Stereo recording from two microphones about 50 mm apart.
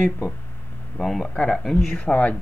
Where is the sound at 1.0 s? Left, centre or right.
Centre.